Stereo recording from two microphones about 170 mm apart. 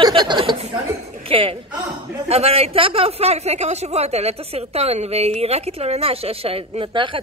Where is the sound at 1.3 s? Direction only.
30° right (ahead or behind).